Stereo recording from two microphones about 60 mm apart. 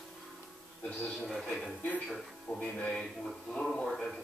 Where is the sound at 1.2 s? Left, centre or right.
Centre.